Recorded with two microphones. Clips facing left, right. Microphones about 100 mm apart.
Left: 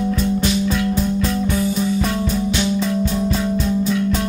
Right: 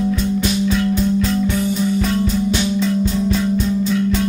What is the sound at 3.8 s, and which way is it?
Music, 5° left (ahead or behind).